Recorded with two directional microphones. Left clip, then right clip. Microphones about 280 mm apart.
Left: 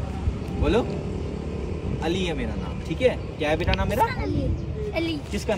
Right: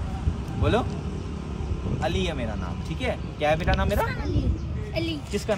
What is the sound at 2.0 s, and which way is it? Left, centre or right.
Speech, centre.